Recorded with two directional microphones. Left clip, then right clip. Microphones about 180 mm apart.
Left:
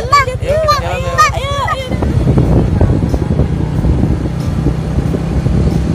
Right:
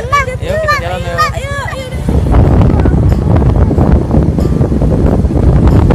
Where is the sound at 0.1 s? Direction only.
25° left (ahead or behind).